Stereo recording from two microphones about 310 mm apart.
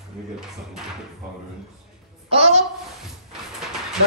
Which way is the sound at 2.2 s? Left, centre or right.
Centre.